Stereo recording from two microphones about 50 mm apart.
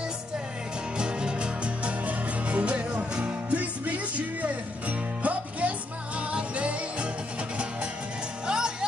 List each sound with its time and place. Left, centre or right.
0.9 s music: centre
8.5 s music: centre